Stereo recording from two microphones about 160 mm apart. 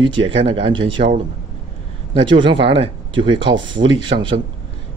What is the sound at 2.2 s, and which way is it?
Speech, 30° right (ahead or behind).